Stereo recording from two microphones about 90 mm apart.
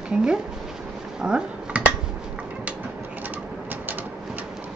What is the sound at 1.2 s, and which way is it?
Dishes, 10° right (ahead or behind).